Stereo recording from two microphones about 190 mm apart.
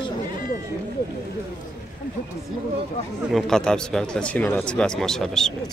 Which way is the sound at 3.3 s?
Centre (ahead or behind).